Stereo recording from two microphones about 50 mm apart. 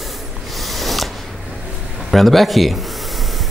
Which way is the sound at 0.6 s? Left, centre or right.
Centre.